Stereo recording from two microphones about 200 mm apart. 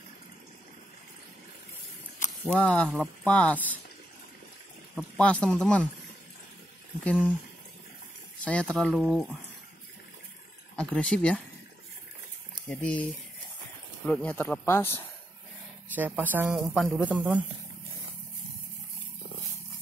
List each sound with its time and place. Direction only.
2.2 s a sound: 40° left (ahead or behind)
2.5 s speech: 5° left (ahead or behind)
4.9 s speech: 5° left (ahead or behind)
7.1 s speech: 5° left (ahead or behind)
8.5 s speech: 5° left (ahead or behind)
10.8 s speech: 5° left (ahead or behind)
12.6 s speech: 5° left (ahead or behind)
15.9 s speech: 10° right (ahead or behind)